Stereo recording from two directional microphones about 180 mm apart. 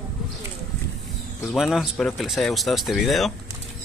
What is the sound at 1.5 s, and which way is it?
Speech, centre (ahead or behind).